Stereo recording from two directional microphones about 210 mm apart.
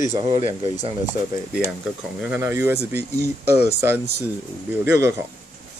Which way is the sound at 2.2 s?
10° right (ahead or behind).